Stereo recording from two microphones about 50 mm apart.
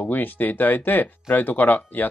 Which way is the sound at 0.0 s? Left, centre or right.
Left.